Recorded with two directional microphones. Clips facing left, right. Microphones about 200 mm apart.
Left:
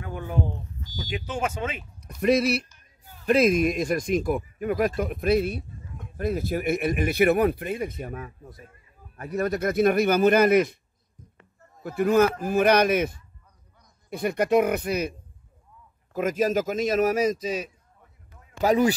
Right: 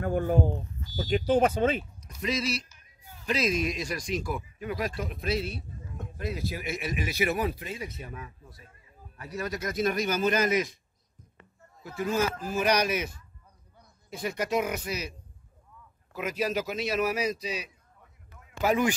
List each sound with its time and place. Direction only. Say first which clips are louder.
0.0 s speech: right 4 dB; 45° right (ahead or behind)
2.0 s speech: left 10 dB; 60° left (ahead or behind)
11.8 s speech: left 8 dB; 60° left (ahead or behind)
14.1 s speech: left 7 dB; 60° left (ahead or behind); by 18.9 s 40° left (ahead or behind)